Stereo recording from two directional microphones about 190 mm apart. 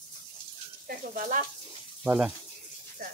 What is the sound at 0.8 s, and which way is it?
Speech, 45° right (ahead or behind).